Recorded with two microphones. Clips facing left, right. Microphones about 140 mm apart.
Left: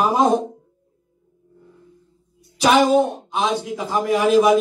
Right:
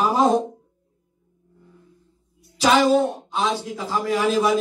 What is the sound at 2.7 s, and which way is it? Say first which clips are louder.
A man's voice: left 2 dB; 20° left (ahead or behind).